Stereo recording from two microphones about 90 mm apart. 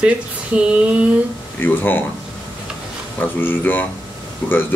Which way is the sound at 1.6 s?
20° left (ahead or behind).